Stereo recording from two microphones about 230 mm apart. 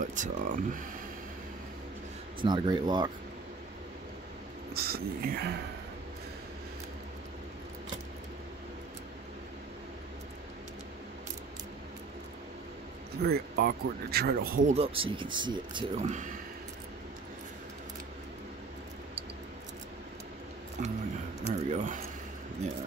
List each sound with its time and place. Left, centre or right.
0.0 s speech: right
2.4 s speech: centre
4.7 s speech: right
13.2 s speech: right
14.7 s speech: right
20.8 s speech: right